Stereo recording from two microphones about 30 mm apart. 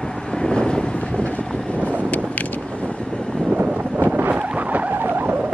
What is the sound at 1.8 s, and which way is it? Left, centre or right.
Vehicle, right.